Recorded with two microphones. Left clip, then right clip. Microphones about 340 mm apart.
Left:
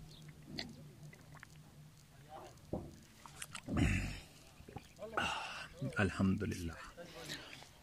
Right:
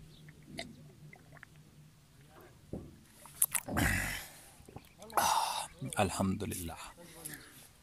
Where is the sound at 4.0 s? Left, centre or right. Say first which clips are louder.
Right 9 dB; right.